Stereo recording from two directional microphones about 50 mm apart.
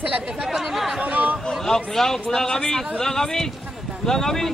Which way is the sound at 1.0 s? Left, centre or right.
Right.